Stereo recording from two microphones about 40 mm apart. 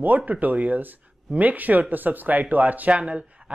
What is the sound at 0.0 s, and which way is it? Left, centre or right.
A man's voice, right.